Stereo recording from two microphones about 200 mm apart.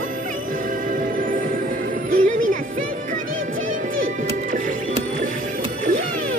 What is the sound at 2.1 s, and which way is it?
Music, 45° right (ahead or behind).